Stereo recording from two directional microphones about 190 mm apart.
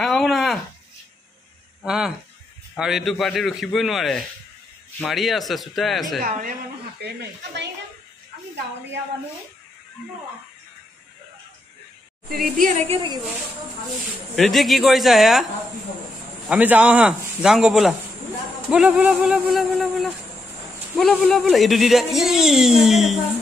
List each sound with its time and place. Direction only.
0.0 s a sound: centre (ahead or behind)
1.9 s speech: centre (ahead or behind)
6.2 s a woman's voice: 45° right (ahead or behind)
12.3 s a woman's voice: 50° right (ahead or behind); by 13.2 s 30° right (ahead or behind)
14.3 s speech: centre (ahead or behind)